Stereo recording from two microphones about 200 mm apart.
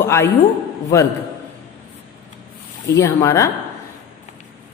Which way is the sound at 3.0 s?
15° left (ahead or behind).